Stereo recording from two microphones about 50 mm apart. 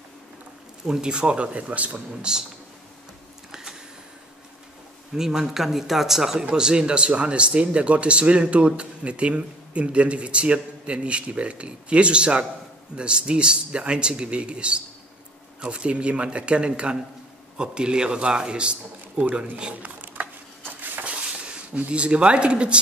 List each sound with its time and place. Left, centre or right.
0.8 s speech: centre
2.3 s speech: centre
5.1 s a man's voice: centre
19.8 s a sound: right
21.1 s speech: right